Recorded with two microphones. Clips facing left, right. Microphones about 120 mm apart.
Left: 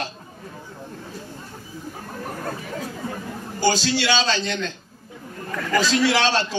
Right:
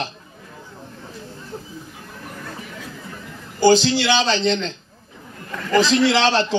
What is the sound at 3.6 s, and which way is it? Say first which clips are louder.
A man's voice: right 6 dB; 20° right (ahead or behind).